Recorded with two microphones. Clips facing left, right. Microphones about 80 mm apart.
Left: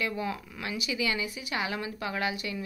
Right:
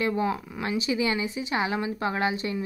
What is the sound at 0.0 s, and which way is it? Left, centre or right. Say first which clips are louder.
Speech: right 6 dB; right.